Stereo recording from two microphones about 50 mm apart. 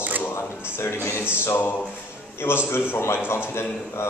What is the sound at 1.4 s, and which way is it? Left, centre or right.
Speech, left.